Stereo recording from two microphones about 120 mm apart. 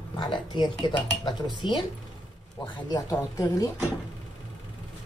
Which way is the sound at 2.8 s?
30° left (ahead or behind).